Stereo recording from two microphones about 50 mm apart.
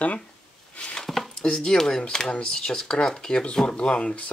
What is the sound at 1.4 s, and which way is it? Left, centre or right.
Speech, centre.